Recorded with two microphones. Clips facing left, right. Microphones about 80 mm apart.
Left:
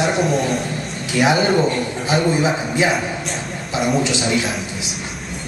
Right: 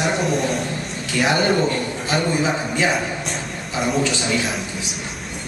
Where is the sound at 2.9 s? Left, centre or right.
Centre.